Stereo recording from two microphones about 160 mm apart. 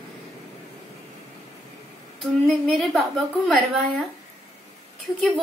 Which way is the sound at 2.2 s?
5° right (ahead or behind).